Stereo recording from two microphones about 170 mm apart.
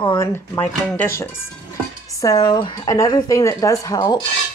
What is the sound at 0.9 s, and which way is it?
Speech, 15° left (ahead or behind).